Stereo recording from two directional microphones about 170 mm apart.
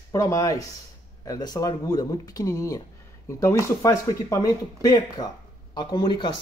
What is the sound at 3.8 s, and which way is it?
Speech, 20° left (ahead or behind).